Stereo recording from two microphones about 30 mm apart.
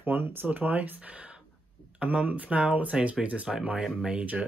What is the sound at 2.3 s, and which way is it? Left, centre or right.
Speech, right.